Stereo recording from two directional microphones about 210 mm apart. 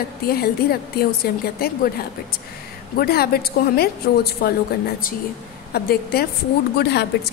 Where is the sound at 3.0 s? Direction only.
45° left (ahead or behind).